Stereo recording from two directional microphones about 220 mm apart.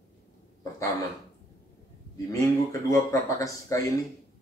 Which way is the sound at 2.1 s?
15° left (ahead or behind).